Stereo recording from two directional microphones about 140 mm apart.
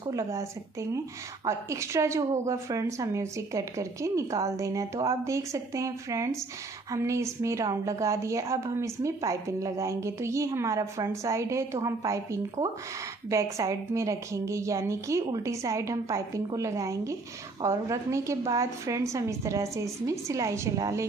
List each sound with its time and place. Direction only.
0.0 s a woman's voice: 25° right (ahead or behind)